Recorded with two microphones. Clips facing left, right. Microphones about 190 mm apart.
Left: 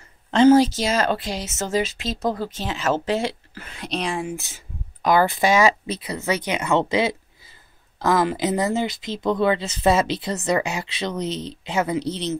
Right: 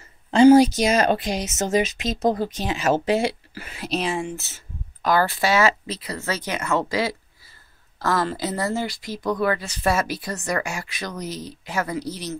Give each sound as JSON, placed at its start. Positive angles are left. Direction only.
{"t": 0.3, "sound": "speech", "side_deg": -10}
{"t": 4.3, "sound": "speech", "side_deg": 15}